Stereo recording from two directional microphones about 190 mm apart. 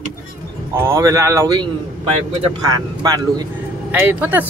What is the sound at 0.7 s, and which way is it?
Speech, 15° right (ahead or behind).